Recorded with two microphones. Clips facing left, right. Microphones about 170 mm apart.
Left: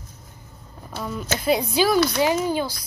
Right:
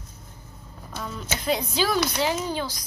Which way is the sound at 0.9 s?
10° left (ahead or behind).